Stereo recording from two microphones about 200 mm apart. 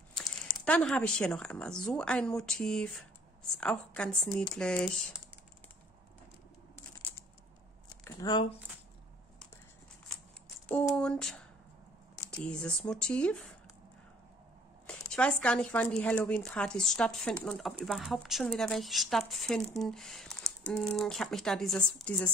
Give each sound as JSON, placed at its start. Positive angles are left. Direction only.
{"t": 0.7, "sound": "speech", "side_deg": 5}
{"t": 7.9, "sound": "a sound", "side_deg": 20}
{"t": 10.7, "sound": "speech", "side_deg": 10}
{"t": 14.9, "sound": "speech", "side_deg": 5}